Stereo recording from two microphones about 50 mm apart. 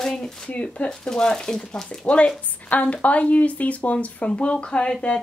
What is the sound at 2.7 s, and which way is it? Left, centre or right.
Speech, left.